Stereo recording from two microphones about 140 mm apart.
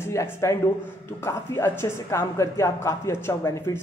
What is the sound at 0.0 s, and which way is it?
Speech, 20° left (ahead or behind).